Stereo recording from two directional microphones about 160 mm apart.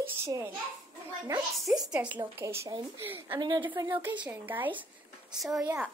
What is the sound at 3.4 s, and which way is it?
Speech, 25° right (ahead or behind).